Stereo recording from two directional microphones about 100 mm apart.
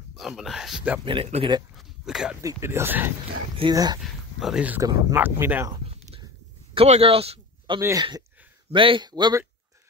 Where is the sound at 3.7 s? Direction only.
40° right (ahead or behind).